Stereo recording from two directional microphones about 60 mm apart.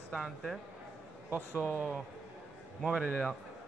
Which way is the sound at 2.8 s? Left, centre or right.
Centre.